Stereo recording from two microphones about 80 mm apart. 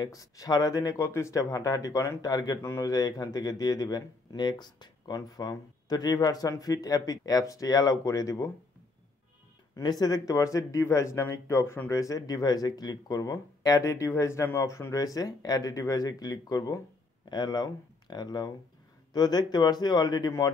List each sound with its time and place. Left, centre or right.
0.0 s speech: left
1.0 s speech: left
2.6 s speech: left
2.9 s speech: left
9.8 s speech: left